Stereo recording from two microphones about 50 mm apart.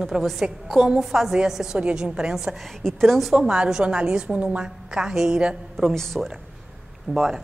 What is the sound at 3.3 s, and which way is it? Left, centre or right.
A woman's voice, centre.